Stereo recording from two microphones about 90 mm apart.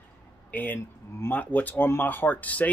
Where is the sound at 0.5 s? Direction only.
20° left (ahead or behind).